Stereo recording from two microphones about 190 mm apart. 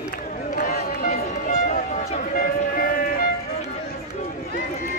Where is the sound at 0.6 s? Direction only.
50° left (ahead or behind).